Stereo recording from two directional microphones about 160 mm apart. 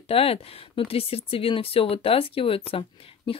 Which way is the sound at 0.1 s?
35° left (ahead or behind).